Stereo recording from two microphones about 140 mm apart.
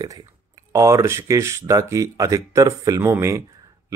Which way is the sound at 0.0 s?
25° right (ahead or behind).